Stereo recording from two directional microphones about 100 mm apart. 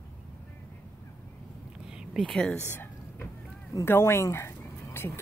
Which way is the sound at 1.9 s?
5° right (ahead or behind).